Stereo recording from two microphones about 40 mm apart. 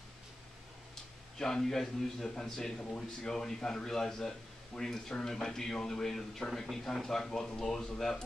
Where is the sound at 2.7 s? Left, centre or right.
Left.